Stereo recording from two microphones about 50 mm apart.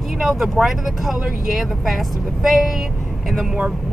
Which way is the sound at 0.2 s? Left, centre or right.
Centre.